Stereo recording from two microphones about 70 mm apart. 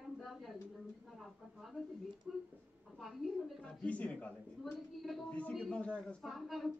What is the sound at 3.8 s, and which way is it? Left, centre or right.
Speech, centre.